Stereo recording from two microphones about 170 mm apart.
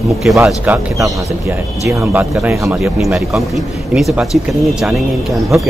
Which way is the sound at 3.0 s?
5° right (ahead or behind).